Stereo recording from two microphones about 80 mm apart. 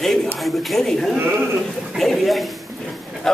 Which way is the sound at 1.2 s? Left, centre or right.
Right.